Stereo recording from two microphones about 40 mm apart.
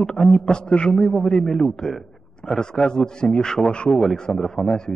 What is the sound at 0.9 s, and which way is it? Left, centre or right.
A man's voice, centre.